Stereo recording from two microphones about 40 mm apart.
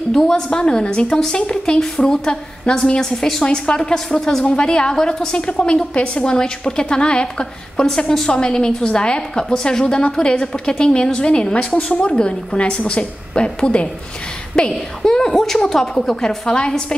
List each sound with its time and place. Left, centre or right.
0.3 s a woman's voice: centre
3.4 s a woman's voice: left
4.5 s a woman's voice: left
14.5 s a woman's voice: centre